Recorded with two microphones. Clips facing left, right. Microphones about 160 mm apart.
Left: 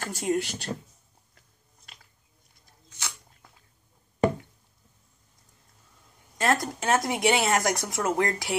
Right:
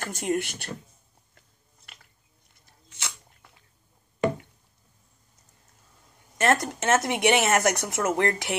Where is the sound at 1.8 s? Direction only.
55° right (ahead or behind).